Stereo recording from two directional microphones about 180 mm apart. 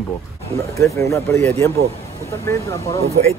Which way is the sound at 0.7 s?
15° left (ahead or behind).